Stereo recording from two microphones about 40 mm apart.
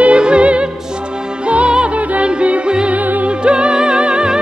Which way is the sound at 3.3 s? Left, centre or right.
Right.